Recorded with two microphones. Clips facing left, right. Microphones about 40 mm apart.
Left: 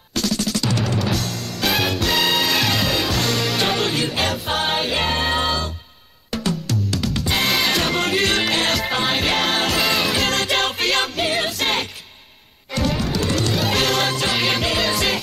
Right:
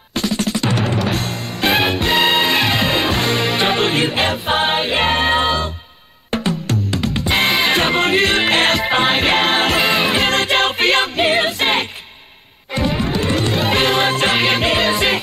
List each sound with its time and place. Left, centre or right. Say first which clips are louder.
0.1 s music: right 3 dB; right
8.0 s music: right 4 dB; centre